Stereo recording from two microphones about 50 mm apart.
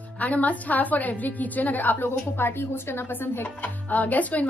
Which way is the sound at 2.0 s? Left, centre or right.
Left.